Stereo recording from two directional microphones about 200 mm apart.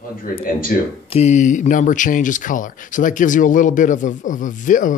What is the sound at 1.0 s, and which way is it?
Speech, 35° left (ahead or behind).